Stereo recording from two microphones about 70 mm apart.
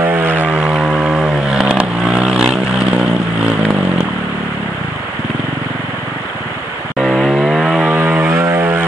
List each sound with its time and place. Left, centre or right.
0.0 s aircraft: right
0.6 s vehicle: centre
7.0 s vehicle: centre
8.3 s aircraft: right